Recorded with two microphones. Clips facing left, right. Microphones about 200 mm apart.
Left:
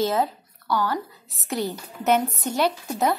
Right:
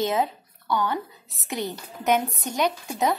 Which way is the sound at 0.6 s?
20° right (ahead or behind).